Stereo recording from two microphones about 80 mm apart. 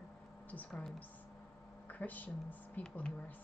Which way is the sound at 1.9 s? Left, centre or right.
Left.